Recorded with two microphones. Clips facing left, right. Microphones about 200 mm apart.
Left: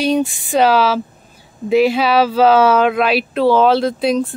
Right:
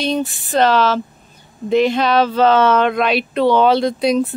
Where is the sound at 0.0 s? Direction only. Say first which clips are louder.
Left 4 dB; 10° left (ahead or behind).